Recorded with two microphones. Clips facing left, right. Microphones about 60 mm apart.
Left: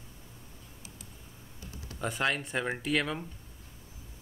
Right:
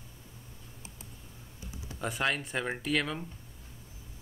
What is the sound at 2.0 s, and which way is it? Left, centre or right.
Speech, centre.